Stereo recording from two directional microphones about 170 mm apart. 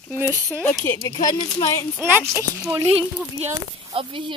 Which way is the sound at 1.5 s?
15° left (ahead or behind).